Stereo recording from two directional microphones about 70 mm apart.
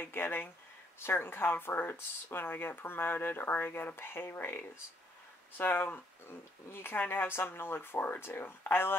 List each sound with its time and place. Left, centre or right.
0.0 s speech: left